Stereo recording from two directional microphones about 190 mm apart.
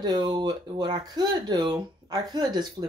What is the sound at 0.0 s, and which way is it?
Speech, 20° right (ahead or behind).